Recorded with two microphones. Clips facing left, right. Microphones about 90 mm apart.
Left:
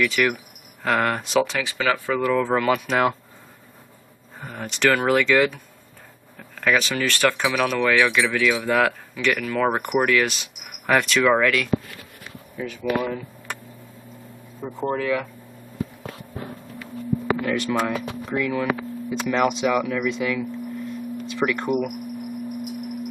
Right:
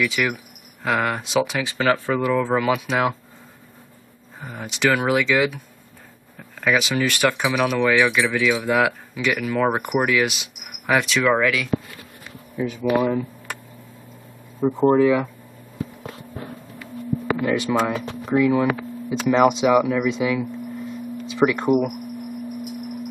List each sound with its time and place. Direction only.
0.0 s speech: 5° right (ahead or behind)
1.5 s speech: 20° right (ahead or behind)
2.3 s speech: 5° right (ahead or behind)
4.4 s speech: centre (ahead or behind)
12.8 s speech: 15° right (ahead or behind)
14.6 s speech: 35° right (ahead or behind)
14.9 s speech: 15° right (ahead or behind)
17.4 s speech: 5° right (ahead or behind)